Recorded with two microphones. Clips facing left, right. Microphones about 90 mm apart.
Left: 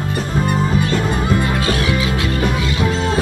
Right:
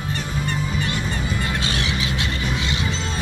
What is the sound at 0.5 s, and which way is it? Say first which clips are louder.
Music: left 8 dB; 50° left (ahead or behind).